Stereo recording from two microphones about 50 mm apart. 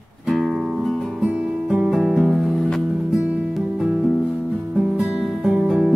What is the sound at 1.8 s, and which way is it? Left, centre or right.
Music, centre.